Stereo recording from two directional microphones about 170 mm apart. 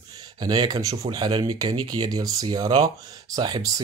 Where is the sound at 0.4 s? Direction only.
25° right (ahead or behind).